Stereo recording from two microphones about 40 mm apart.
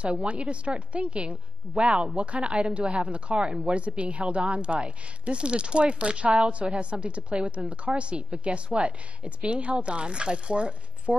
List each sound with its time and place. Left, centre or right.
0.0 s a woman's voice: right